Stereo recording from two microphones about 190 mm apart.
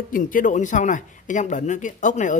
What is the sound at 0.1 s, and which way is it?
Speech, 45° left (ahead or behind).